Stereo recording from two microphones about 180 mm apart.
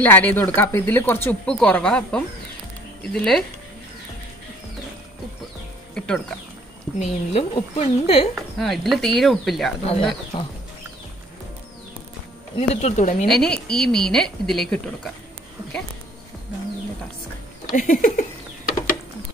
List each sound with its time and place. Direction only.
0.0 s a woman's voice: 10° left (ahead or behind)
5.9 s music: 5° left (ahead or behind)
7.0 s speech: 35° left (ahead or behind)
8.4 s a woman's voice: centre (ahead or behind)
9.8 s speech: 30° left (ahead or behind)
12.5 s speech: 40° left (ahead or behind)
13.3 s a woman's voice: 5° left (ahead or behind)
17.6 s a sound: 50° left (ahead or behind)